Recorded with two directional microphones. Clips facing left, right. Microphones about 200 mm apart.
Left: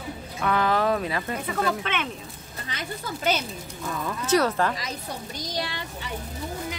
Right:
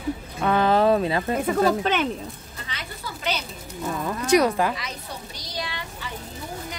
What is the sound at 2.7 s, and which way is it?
Speech, 45° left (ahead or behind).